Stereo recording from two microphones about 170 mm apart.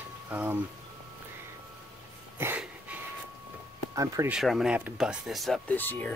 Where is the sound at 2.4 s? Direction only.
10° right (ahead or behind).